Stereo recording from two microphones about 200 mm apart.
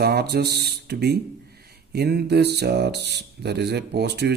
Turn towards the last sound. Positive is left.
turn(degrees=-55)  # may be behind; listen again after turning